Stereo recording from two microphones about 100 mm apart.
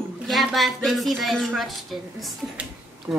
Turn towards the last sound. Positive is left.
turn(degrees=-10)  # may be behind; listen again after turning